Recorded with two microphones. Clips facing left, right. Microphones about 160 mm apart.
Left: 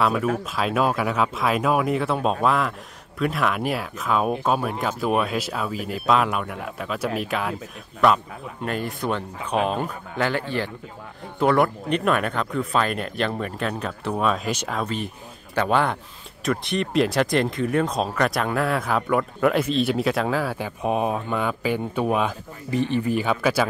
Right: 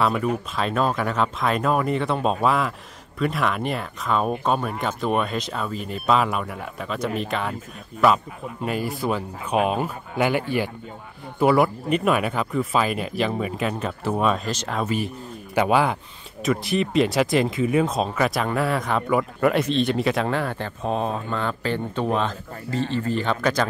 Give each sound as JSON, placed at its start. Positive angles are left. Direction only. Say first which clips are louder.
{"t": 0.0, "sound": "speech", "louder": "even", "side_deg": 0}